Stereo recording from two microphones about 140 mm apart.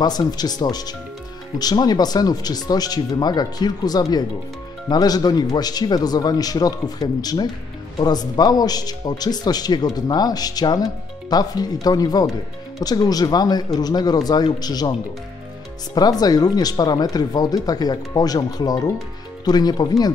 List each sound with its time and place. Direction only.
0.0 s a man's voice: 30° left (ahead or behind)
15.9 s a man's voice: 30° left (ahead or behind)